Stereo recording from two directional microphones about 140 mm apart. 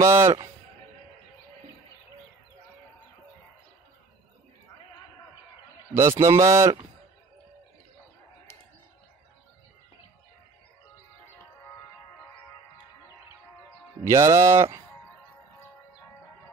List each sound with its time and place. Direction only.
0.0 s speech: 20° right (ahead or behind)
5.9 s speech: 20° right (ahead or behind)
14.0 s speech: 20° right (ahead or behind)